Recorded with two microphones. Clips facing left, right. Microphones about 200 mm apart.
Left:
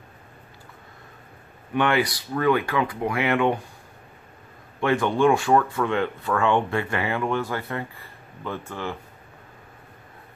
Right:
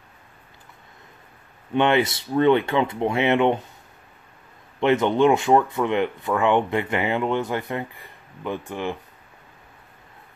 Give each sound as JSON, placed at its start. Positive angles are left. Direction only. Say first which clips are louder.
{"t": 1.7, "sound": "speech", "louder": "right 3 dB", "side_deg": -20}
{"t": 4.7, "sound": "speech", "louder": "right 3 dB", "side_deg": -20}